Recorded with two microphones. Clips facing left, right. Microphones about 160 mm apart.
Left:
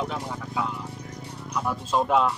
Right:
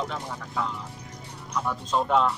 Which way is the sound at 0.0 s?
5° left (ahead or behind).